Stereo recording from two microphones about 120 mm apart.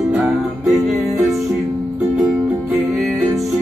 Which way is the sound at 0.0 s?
10° right (ahead or behind).